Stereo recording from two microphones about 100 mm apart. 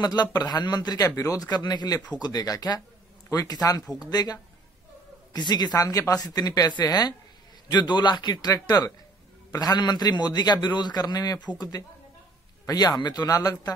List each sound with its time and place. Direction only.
0.0 s a man's voice: 45° left (ahead or behind)